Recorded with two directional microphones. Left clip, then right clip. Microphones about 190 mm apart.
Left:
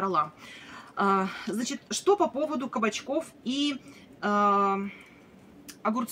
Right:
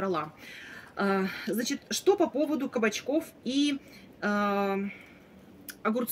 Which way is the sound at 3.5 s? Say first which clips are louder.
Right 3 dB; 10° right (ahead or behind).